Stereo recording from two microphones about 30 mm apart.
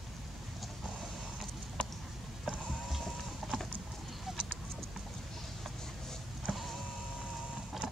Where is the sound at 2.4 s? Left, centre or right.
Centre.